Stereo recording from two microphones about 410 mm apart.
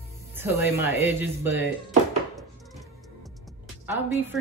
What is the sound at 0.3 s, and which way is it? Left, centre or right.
Speech, centre.